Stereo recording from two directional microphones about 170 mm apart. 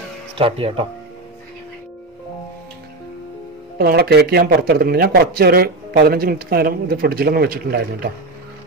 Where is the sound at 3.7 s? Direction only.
65° right (ahead or behind).